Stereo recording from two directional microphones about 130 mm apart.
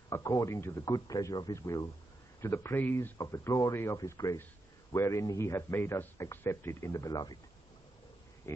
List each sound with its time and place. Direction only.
0.1 s speech: 25° left (ahead or behind)